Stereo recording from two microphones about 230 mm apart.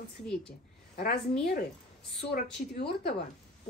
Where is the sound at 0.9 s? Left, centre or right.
Left.